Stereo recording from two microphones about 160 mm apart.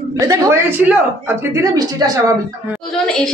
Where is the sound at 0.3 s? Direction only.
15° right (ahead or behind).